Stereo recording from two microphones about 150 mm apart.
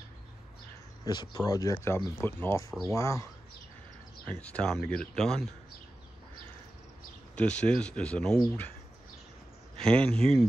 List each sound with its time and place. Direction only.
1.0 s speech: 30° left (ahead or behind)
4.3 s speech: 10° left (ahead or behind)
7.3 s speech: 10° left (ahead or behind)
9.8 s speech: 5° left (ahead or behind)